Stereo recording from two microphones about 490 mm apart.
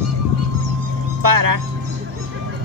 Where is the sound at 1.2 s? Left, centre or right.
Right.